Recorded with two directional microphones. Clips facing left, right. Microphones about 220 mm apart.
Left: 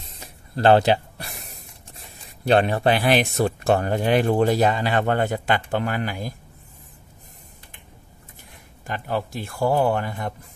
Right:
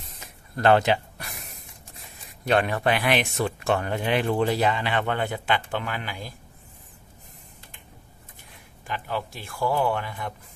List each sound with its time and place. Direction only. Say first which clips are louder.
0.0 s spray: left 2 dB; 30° left (ahead or behind)
2.4 s speech: left 4 dB; 30° left (ahead or behind)
8.8 s speech: left 4 dB; 45° left (ahead or behind)